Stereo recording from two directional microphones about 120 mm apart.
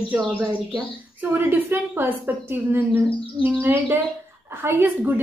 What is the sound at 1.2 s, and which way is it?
A woman's voice, 15° right (ahead or behind).